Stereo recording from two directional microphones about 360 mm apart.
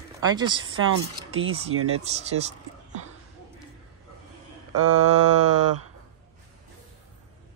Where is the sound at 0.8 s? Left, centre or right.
Right.